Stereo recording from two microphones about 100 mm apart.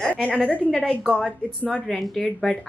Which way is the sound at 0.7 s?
Centre (ahead or behind).